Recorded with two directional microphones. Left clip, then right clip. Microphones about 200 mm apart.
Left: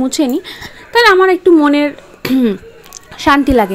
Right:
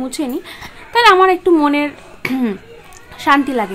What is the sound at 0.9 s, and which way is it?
A woman's voice, 10° left (ahead or behind).